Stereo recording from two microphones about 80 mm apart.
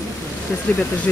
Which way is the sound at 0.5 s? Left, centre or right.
Centre.